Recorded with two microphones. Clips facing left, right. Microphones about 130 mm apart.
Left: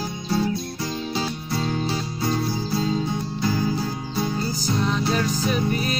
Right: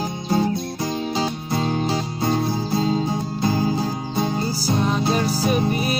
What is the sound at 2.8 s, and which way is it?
Music, 35° right (ahead or behind).